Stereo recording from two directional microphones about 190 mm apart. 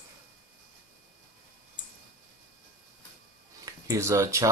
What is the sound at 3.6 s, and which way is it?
Speech, 20° right (ahead or behind).